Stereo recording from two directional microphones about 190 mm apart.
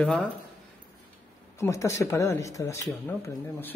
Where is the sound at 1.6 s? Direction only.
15° left (ahead or behind).